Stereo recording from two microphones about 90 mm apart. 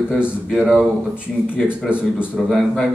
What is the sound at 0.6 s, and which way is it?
Speech, 5° left (ahead or behind).